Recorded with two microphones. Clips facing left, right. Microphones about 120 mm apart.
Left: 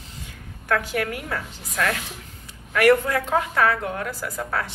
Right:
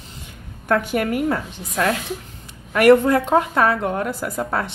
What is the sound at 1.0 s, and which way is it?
A woman's voice, 25° right (ahead or behind).